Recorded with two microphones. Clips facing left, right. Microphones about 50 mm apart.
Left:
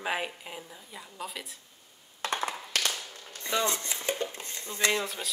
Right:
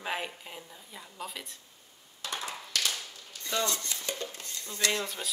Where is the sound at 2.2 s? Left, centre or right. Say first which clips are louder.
Left 6 dB; left.